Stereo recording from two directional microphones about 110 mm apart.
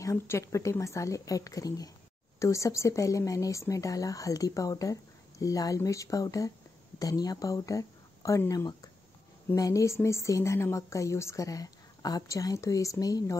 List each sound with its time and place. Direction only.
0.0 s a woman's voice: 25° left (ahead or behind)